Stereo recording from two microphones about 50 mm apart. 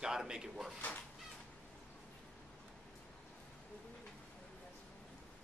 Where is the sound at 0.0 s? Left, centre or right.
Centre.